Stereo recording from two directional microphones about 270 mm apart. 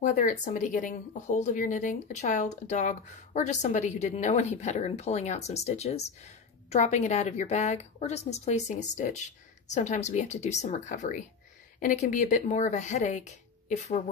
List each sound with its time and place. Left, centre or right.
0.0 s speech: left